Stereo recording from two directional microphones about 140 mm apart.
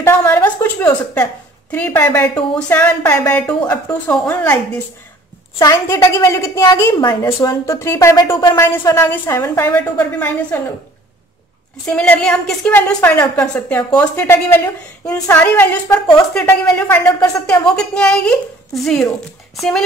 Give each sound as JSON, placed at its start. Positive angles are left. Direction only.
{"t": 0.0, "sound": "a woman's voice", "side_deg": 15}
{"t": 11.8, "sound": "a woman's voice", "side_deg": 10}